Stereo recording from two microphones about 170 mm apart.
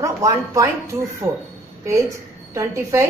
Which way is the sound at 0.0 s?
20° right (ahead or behind).